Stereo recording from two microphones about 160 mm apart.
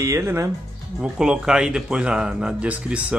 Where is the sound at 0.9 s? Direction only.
5° right (ahead or behind).